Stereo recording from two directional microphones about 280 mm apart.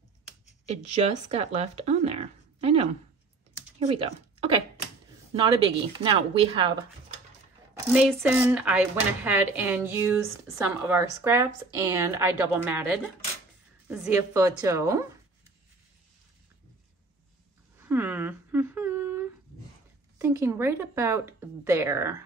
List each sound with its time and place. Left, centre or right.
0.7 s speech: right
3.9 s speech: centre
5.9 s a woman's voice: centre
7.9 s a woman's voice: centre
17.7 s a sound: centre
20.2 s a woman's voice: centre